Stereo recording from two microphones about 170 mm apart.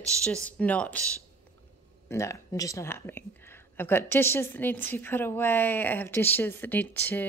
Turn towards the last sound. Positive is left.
turn(degrees=10)  # may be behind; listen again after turning